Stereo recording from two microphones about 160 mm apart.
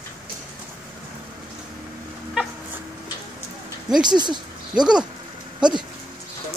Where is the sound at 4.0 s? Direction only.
25° right (ahead or behind).